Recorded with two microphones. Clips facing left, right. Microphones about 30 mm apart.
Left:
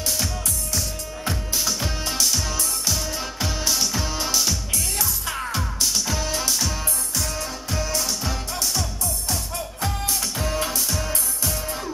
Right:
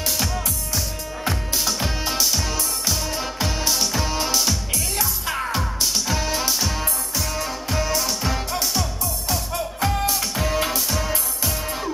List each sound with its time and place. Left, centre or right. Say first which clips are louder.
1.2 s music: right 2 dB; centre